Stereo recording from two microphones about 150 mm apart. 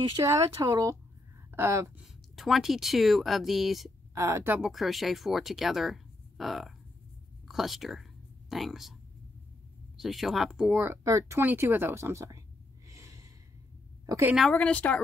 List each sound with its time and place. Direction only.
0.2 s speech: 20° right (ahead or behind)
2.0 s speech: centre (ahead or behind)
4.1 s speech: 20° right (ahead or behind)
4.6 s speech: centre (ahead or behind)
9.9 s speech: centre (ahead or behind); by 12.4 s 20° right (ahead or behind)
12.8 s gasp: 20° right (ahead or behind)
14.0 s a woman's voice: 20° right (ahead or behind)
14.5 s speech: 10° left (ahead or behind)